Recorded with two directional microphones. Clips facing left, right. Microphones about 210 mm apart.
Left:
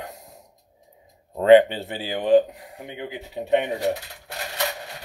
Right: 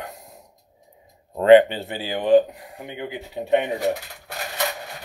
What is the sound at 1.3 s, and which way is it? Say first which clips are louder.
Speech: right 1 dB; 50° right (ahead or behind).